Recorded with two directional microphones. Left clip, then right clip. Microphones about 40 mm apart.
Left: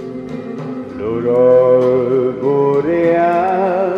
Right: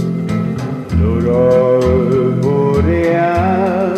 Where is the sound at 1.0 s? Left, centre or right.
Left.